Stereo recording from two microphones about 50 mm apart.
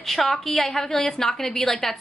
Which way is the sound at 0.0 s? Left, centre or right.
Centre.